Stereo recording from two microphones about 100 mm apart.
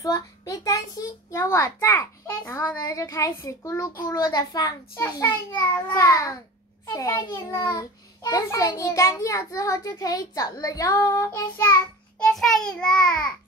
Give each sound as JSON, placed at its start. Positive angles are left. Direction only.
{"t": 0.0, "sound": "a sound", "side_deg": 35}
{"t": 2.8, "sound": "a child's voice", "side_deg": 35}
{"t": 4.2, "sound": "a child's voice", "side_deg": 40}
{"t": 12.2, "sound": "a child's voice", "side_deg": 5}